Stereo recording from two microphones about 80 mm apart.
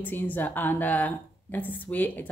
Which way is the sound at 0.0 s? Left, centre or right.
Left.